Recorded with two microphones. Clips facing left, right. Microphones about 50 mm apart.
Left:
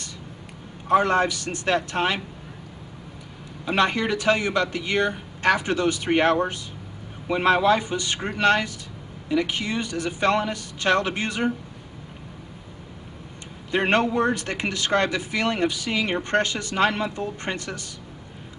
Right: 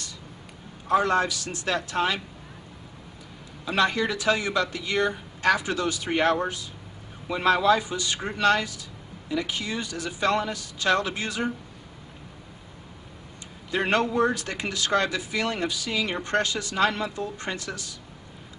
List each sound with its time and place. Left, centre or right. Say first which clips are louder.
0.8 s a man's voice: left 3 dB; left
3.6 s a man's voice: left 2 dB; left
13.7 s a man's voice: left 3 dB; left